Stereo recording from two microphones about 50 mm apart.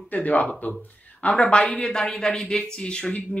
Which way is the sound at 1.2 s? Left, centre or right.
Left.